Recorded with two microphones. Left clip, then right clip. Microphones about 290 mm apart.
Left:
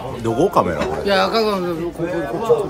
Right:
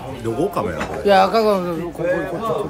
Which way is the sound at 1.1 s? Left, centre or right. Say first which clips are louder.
Right 4 dB; centre.